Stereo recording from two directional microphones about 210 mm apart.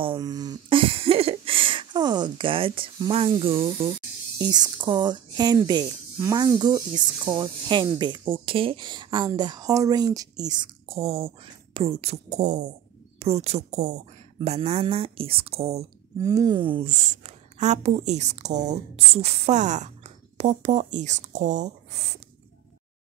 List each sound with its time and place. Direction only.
0.0 s speech: 20° right (ahead or behind)
16.2 s a woman's voice: 15° right (ahead or behind); by 22.2 s 30° right (ahead or behind)